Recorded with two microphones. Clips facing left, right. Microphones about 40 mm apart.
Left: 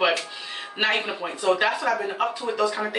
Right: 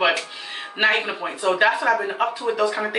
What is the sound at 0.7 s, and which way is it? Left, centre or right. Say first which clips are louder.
Speech: right 4 dB; centre.